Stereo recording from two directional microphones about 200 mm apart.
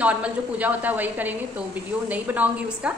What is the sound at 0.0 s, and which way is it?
A woman's voice, 5° right (ahead or behind).